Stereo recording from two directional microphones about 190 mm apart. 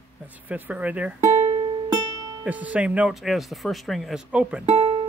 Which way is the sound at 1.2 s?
40° right (ahead or behind).